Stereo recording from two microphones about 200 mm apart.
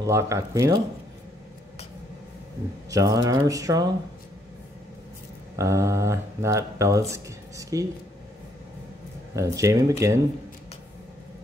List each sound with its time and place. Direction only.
0.0 s speech: 15° right (ahead or behind)
2.9 s speech: 15° right (ahead or behind)
5.6 s speech: 15° right (ahead or behind)
9.3 s speech: 15° right (ahead or behind)